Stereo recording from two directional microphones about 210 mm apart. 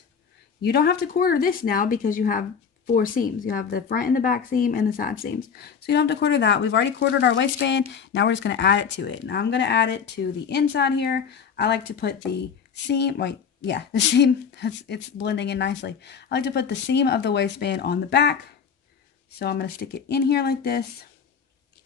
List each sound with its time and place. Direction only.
0.7 s speech: 50° left (ahead or behind)
19.3 s speech: 50° left (ahead or behind)